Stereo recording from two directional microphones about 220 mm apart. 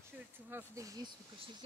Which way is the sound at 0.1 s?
10° right (ahead or behind).